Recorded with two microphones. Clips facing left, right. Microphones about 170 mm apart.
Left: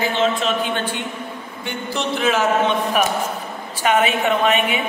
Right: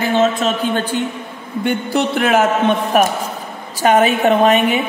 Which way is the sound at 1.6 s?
60° right (ahead or behind).